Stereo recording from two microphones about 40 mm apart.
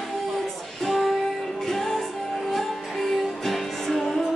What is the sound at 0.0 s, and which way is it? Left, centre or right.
Music, centre.